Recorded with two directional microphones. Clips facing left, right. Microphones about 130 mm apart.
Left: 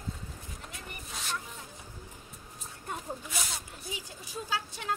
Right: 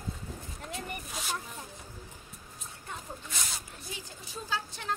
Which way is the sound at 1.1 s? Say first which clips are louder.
Left 1 dB; 5° right (ahead or behind).